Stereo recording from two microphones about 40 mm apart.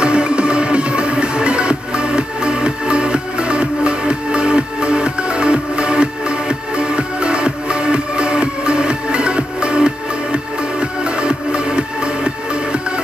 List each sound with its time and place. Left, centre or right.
0.0 s music: right